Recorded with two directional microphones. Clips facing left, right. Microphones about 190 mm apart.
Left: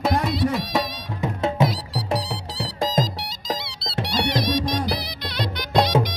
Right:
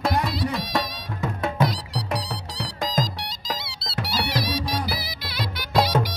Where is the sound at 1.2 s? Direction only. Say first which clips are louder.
Left 3 dB; 25° left (ahead or behind).